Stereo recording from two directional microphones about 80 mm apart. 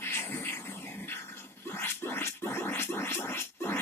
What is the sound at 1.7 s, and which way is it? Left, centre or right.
Scratching, left.